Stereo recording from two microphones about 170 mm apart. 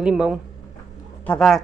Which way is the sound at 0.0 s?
5° right (ahead or behind).